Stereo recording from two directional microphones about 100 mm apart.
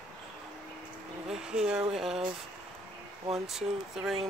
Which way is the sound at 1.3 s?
5° right (ahead or behind).